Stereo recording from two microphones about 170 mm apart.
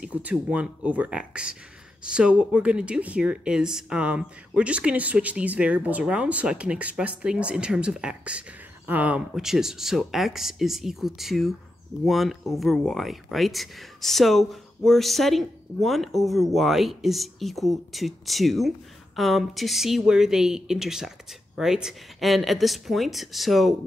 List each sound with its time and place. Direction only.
0.0 s speech: 10° right (ahead or behind)